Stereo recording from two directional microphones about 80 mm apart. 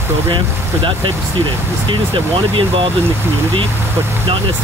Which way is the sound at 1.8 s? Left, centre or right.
Right.